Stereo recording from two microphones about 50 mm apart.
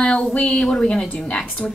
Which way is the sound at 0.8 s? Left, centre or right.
Centre.